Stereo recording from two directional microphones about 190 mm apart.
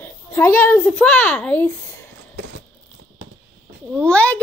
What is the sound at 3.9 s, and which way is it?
Speech, 5° left (ahead or behind).